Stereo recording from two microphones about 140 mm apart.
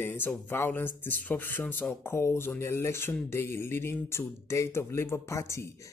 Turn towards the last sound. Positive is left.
turn(degrees=20)  # may be behind; listen again after turning